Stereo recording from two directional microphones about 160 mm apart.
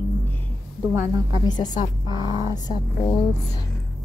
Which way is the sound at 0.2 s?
15° left (ahead or behind).